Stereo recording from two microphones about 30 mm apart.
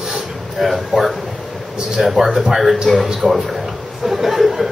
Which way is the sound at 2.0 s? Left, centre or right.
Centre.